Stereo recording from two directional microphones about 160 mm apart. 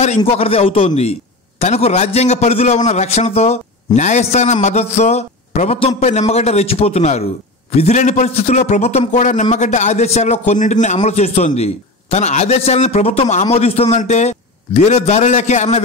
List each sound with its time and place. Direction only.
0.2 s a man's voice: 35° left (ahead or behind)